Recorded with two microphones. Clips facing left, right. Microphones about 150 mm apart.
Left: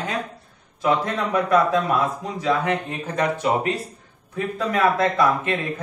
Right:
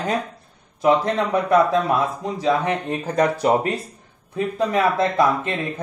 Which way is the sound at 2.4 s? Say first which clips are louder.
Right 1 dB; 30° right (ahead or behind).